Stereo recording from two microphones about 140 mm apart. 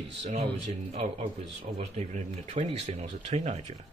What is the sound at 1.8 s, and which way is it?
Speech, 50° right (ahead or behind).